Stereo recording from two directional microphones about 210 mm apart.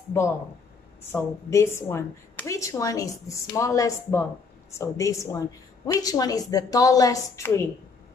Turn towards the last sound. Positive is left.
turn(degrees=15)  # may be behind; listen again after turning